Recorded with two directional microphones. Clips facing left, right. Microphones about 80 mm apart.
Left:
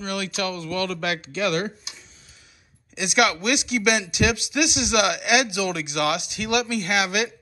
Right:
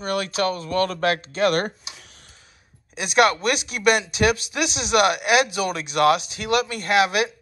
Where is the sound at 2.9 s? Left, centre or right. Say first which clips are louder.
Right 3 dB; right.